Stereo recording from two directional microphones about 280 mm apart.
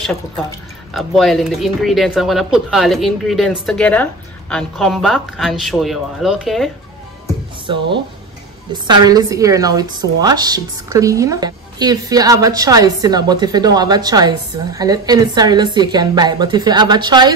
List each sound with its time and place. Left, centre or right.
0.9 s speech: centre
7.7 s a woman's voice: centre